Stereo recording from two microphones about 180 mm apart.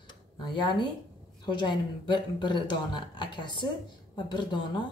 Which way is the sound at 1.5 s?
25° left (ahead or behind).